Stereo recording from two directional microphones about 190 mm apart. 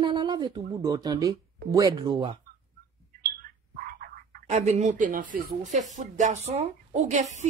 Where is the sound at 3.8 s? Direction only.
50° right (ahead or behind).